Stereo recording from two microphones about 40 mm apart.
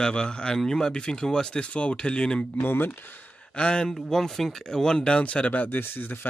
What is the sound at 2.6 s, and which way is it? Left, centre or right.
Speech, left.